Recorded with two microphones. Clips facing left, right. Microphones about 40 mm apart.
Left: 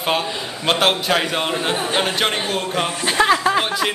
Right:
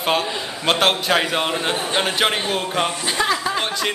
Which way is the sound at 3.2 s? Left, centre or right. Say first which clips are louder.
Left 5 dB; centre.